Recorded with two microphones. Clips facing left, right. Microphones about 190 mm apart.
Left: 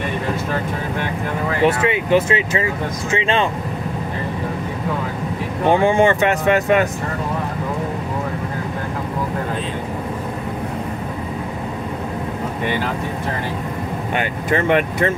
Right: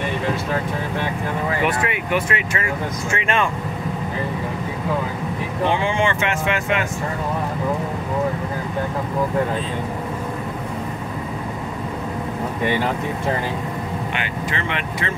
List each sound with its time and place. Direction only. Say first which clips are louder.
1.6 s speech: left 5 dB; 25° left (ahead or behind)
5.7 s speech: left 8 dB; 45° left (ahead or behind)
14.1 s speech: left 6 dB; 45° left (ahead or behind)